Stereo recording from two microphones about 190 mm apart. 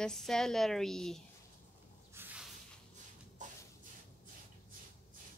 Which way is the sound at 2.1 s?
10° right (ahead or behind).